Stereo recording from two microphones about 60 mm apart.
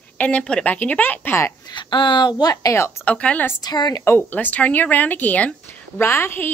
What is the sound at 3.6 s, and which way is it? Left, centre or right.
Speech, left.